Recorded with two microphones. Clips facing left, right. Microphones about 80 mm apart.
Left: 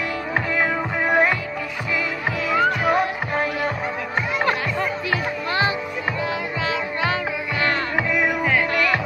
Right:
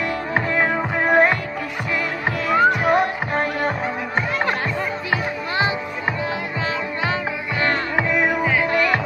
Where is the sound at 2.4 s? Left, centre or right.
Right.